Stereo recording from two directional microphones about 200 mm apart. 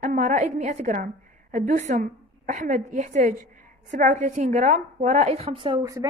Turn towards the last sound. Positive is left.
turn(degrees=-20)  # may be behind; listen again after turning